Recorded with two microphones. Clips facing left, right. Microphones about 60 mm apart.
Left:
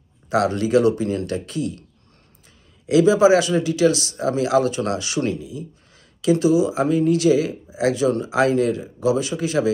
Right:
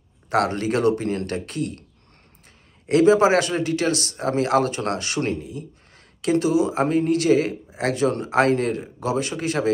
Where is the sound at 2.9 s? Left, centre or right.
Right.